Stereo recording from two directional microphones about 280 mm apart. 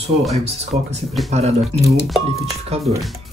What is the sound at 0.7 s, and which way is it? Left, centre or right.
Speech, right.